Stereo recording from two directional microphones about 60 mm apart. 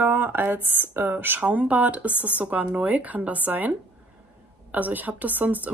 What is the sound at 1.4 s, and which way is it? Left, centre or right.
Speech, right.